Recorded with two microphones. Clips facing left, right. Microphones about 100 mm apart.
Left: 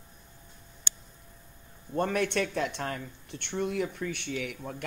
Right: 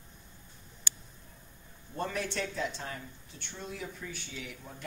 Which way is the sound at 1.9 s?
55° left (ahead or behind).